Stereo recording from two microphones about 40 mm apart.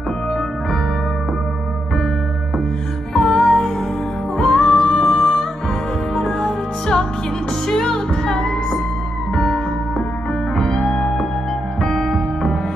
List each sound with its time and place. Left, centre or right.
3.1 s music: centre
10.5 s music: centre